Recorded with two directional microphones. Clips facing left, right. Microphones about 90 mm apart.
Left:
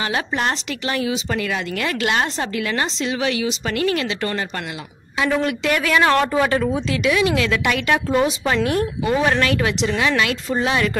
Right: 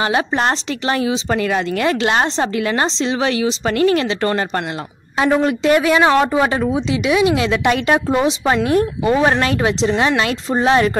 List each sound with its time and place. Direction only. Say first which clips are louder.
0.0 s speech: right 5 dB; 35° right (ahead or behind)